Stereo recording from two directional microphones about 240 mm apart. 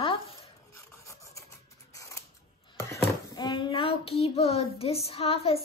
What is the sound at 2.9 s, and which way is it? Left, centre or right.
Speech, centre.